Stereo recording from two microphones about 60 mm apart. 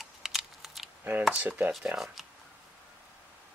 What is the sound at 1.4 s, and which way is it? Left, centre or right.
Chopping, right.